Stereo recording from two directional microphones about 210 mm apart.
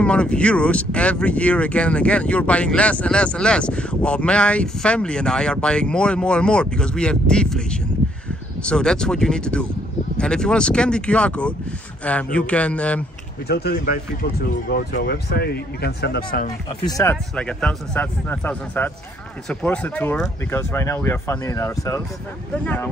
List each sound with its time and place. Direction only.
0.0 s speech: 5° left (ahead or behind)
13.5 s speech: 50° left (ahead or behind)
16.8 s speech: 15° left (ahead or behind)